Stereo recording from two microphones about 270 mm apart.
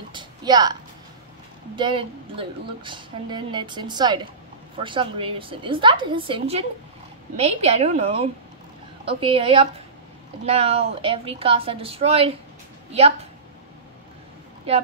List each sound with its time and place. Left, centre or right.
0.1 s music: centre
1.8 s a woman's voice: centre